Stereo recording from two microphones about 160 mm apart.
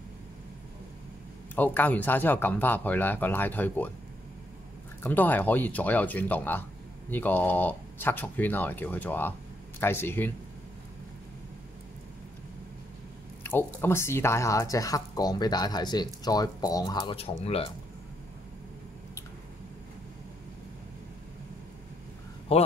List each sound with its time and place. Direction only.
1.5 s speech: 10° left (ahead or behind)
5.0 s speech: 10° left (ahead or behind)
13.4 s speech: 10° left (ahead or behind)
17.0 s speech: 35° left (ahead or behind)
22.5 s speech: 40° left (ahead or behind)